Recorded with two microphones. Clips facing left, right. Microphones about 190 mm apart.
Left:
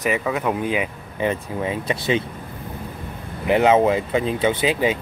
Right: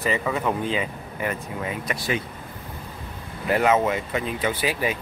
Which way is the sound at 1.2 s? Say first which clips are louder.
Left 6 dB; 25° left (ahead or behind).